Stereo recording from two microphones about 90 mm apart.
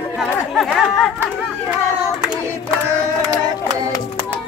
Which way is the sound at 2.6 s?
35° right (ahead or behind).